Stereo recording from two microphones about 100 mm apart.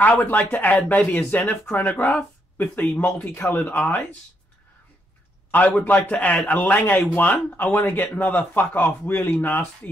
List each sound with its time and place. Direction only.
0.0 s a man's voice: 15° left (ahead or behind)
5.5 s a man's voice: 15° left (ahead or behind)